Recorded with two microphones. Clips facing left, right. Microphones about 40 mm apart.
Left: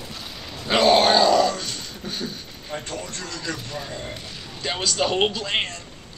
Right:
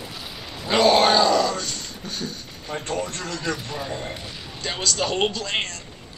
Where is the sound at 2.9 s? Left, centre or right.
Right.